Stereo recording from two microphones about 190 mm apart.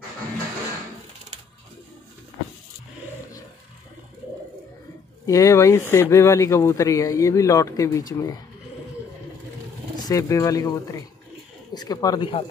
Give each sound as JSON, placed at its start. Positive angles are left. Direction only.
{"t": 5.2, "sound": "speech", "side_deg": 15}
{"t": 10.0, "sound": "speech", "side_deg": 15}